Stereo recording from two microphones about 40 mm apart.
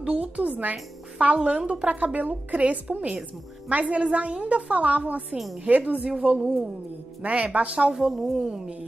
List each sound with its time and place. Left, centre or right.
0.0 s a woman's voice: right
1.3 s a woman's voice: right
7.9 s speech: centre
8.5 s a woman's voice: right